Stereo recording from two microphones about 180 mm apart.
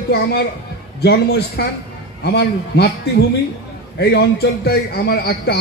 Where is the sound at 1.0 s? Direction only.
65° left (ahead or behind).